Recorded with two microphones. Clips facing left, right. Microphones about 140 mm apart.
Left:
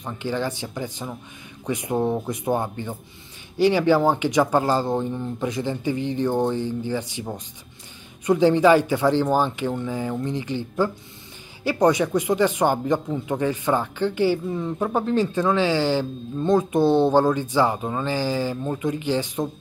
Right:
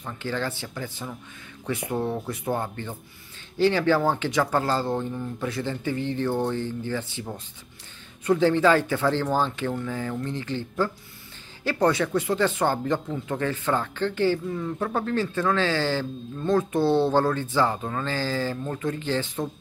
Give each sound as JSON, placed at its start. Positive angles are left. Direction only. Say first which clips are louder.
{"t": 0.0, "sound": "speech", "louder": "left 3 dB", "side_deg": 15}